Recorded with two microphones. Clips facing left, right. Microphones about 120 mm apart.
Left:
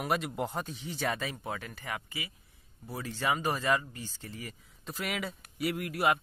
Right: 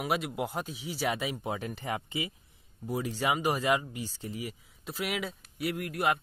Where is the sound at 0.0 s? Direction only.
Centre (ahead or behind).